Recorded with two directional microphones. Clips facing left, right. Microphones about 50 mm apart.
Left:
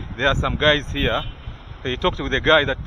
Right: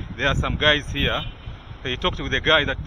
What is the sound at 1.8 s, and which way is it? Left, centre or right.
Speech, right.